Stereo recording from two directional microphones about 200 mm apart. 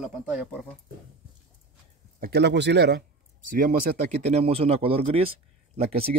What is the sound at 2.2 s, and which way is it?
Speech, 55° right (ahead or behind).